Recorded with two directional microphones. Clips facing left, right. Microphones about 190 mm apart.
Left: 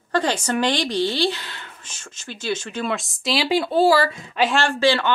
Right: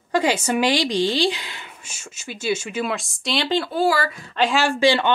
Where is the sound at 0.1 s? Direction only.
10° right (ahead or behind); by 3.7 s 10° left (ahead or behind).